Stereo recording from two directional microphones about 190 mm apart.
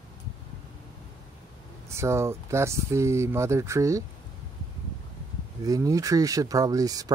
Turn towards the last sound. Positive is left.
turn(degrees=-20)  # may be behind; listen again after turning